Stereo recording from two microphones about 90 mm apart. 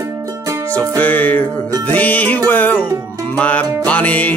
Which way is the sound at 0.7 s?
20° left (ahead or behind).